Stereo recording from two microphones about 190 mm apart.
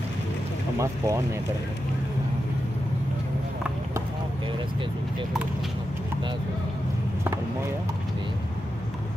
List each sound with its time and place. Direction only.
0.7 s speech: 15° right (ahead or behind)